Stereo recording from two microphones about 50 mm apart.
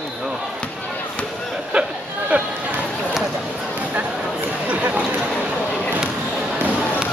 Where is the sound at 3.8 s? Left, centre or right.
Right.